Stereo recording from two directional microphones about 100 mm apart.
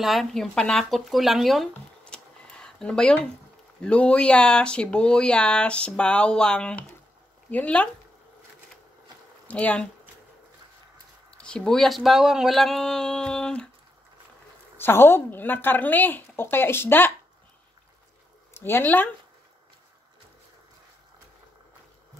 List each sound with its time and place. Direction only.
0.0 s speech: centre (ahead or behind)
9.5 s speech: 10° left (ahead or behind)
11.3 s speech: 10° left (ahead or behind)
14.8 s speech: 20° left (ahead or behind)
18.6 s speech: 20° left (ahead or behind)